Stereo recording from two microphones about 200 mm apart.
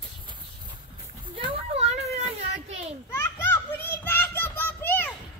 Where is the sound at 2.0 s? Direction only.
30° right (ahead or behind).